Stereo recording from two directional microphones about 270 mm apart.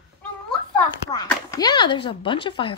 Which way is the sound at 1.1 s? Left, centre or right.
Centre.